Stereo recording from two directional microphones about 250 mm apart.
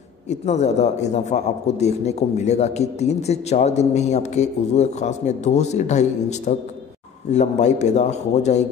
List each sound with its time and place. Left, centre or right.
0.3 s speech: left